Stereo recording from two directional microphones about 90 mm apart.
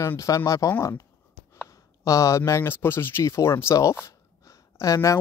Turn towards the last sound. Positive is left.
turn(degrees=35)  # may be behind; listen again after turning